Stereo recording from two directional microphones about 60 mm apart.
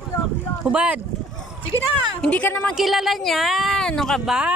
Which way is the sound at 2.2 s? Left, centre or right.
Left.